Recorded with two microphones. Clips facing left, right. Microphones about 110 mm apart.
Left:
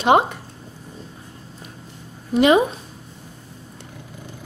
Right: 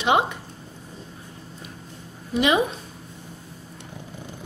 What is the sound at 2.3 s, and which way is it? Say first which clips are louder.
Speech: left 6 dB; 45° left (ahead or behind).